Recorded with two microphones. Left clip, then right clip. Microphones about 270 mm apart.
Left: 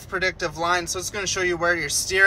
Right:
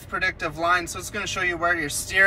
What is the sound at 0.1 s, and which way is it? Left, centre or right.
Speech, centre.